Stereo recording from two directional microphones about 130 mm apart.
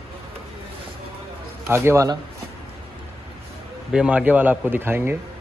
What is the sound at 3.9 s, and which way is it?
A man's voice, 10° right (ahead or behind).